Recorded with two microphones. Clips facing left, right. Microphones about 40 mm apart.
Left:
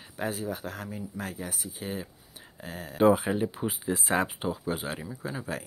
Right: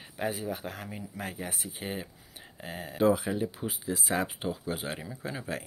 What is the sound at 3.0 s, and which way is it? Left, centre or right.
Speech, left.